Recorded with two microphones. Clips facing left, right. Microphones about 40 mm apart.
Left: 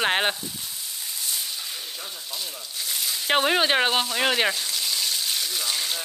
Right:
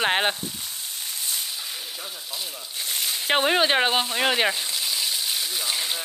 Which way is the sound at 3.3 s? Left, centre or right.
Centre.